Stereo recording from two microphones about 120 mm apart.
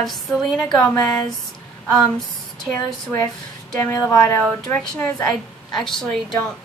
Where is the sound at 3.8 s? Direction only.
20° left (ahead or behind).